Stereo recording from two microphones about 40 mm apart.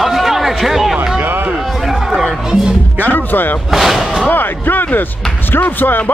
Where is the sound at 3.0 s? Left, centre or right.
Left.